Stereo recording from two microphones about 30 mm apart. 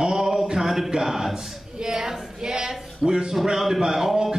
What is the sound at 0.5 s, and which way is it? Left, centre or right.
Speech, centre.